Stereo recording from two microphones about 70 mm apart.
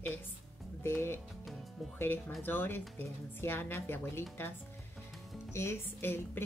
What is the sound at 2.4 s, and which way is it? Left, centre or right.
A woman's voice, left.